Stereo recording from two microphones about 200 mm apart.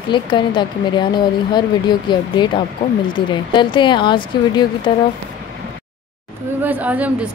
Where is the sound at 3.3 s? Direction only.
25° left (ahead or behind).